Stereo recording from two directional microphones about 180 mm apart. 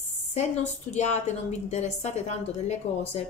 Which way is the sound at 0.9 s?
40° left (ahead or behind).